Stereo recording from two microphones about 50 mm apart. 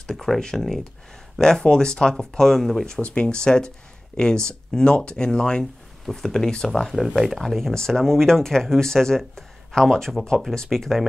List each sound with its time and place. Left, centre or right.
0.0 s speech: centre
2.9 s speech: left
6.9 s speech: centre